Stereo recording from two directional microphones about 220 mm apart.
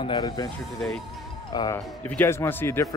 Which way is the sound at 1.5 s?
15° left (ahead or behind).